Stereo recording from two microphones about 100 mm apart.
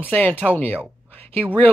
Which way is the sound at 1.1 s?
20° left (ahead or behind).